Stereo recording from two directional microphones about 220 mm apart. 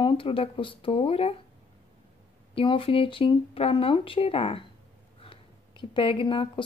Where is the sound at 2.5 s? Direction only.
25° left (ahead or behind).